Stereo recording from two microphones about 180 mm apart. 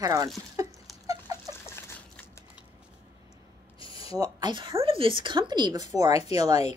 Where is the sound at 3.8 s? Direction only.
30° left (ahead or behind).